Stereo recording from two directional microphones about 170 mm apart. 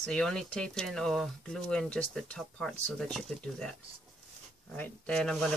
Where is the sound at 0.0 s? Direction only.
5° left (ahead or behind).